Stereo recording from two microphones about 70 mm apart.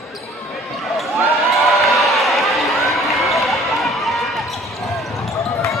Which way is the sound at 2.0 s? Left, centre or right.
Centre.